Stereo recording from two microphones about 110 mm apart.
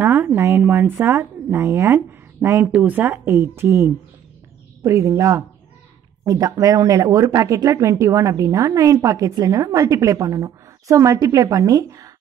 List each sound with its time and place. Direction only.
0.0 s a woman's voice: 20° right (ahead or behind)
2.0 s a sound: 25° right (ahead or behind)
2.6 s speech: 15° right (ahead or behind); by 12.1 s 30° right (ahead or behind)